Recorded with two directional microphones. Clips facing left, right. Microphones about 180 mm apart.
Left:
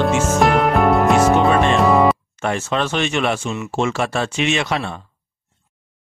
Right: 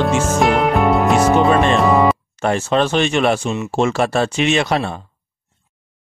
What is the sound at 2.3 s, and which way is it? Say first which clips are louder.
Speech: right 4 dB; 35° right (ahead or behind).